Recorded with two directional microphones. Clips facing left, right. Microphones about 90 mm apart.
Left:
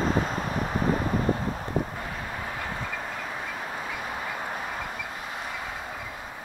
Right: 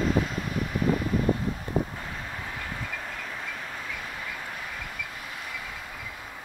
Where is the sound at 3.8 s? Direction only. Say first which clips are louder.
Left 4 dB; 30° left (ahead or behind).